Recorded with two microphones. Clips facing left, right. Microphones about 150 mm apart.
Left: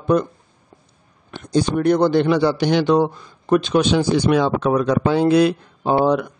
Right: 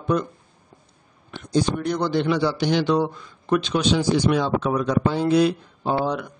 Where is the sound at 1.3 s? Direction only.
65° left (ahead or behind).